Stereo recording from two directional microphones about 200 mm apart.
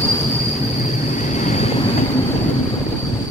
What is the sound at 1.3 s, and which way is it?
Train, 35° left (ahead or behind).